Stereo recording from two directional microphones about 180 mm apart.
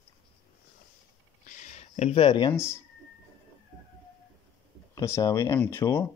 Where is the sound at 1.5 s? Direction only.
45° left (ahead or behind).